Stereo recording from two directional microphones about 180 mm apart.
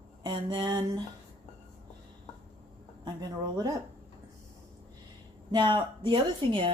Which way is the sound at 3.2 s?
20° right (ahead or behind).